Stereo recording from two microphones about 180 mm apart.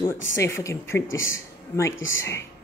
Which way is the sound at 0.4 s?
15° left (ahead or behind).